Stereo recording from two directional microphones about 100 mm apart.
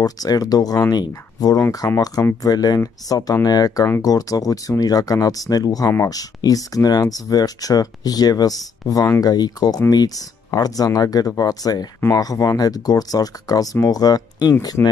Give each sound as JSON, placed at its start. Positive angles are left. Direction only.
{"t": 0.0, "sound": "speech", "side_deg": 40}
{"t": 1.6, "sound": "speech", "side_deg": 30}